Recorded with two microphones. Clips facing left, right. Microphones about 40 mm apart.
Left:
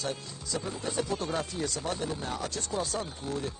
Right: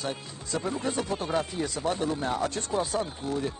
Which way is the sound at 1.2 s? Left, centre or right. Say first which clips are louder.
Right 3 dB; centre.